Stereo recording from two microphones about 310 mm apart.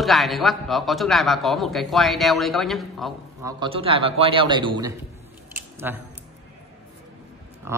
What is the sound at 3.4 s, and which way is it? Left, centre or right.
A man's voice, centre.